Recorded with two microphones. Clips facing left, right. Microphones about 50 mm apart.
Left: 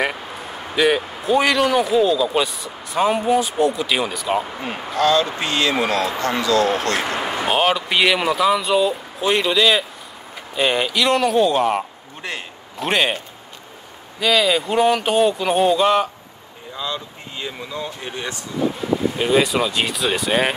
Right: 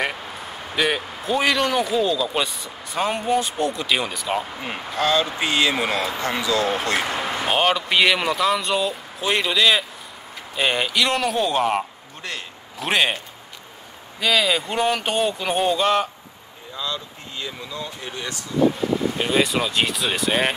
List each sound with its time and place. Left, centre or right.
0.7 s a man's voice: centre
7.2 s a man's voice: centre
12.2 s speech: centre
12.7 s a man's voice: centre
14.2 s a man's voice: centre
16.7 s speech: centre
19.1 s a man's voice: centre